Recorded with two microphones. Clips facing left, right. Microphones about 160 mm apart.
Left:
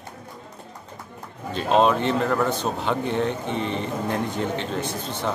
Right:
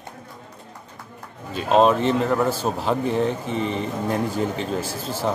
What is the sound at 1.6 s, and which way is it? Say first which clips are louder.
A man's voice: right 2 dB; centre (ahead or behind).